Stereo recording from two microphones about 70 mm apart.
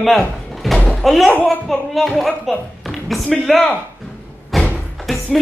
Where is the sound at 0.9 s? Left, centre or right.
Centre.